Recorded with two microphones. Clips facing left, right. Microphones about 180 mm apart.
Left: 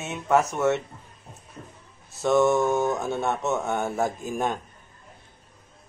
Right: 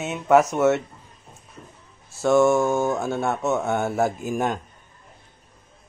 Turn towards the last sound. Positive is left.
turn(degrees=-10)  # may be behind; listen again after turning